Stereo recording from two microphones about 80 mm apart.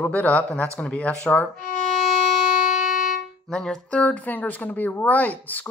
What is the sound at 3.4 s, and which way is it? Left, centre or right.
Speech, centre.